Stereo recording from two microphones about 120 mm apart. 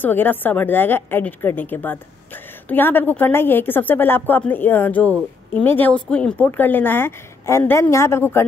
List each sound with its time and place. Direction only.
0.0 s a woman's voice: 15° left (ahead or behind)